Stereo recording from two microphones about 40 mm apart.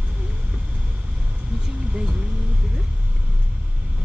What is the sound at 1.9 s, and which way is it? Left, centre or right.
Vehicle, right.